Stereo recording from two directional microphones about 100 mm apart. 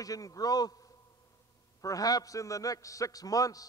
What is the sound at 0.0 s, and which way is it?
A man's voice, 35° left (ahead or behind).